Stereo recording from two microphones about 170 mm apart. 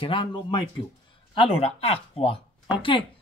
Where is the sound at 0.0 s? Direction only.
30° left (ahead or behind).